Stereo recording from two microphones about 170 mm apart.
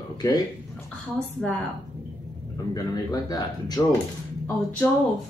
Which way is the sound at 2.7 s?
20° left (ahead or behind).